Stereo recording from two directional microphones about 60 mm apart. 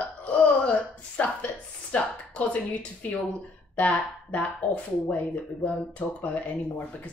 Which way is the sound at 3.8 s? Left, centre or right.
Left.